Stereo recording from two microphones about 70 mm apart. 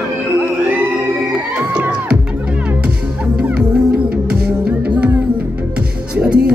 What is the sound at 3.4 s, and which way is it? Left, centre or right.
Music, centre.